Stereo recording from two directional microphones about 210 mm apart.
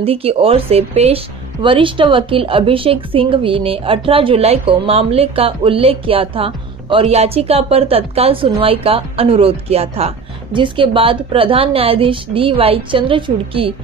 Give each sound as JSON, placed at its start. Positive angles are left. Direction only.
{"t": 0.0, "sound": "speech", "side_deg": -30}